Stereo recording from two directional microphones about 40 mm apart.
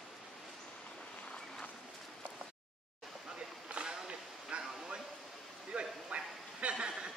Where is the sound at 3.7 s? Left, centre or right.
Right.